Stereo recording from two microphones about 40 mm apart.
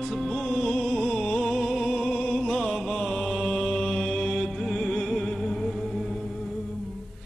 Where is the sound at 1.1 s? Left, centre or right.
Centre.